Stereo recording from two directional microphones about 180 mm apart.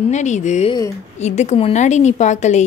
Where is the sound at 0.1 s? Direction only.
40° left (ahead or behind).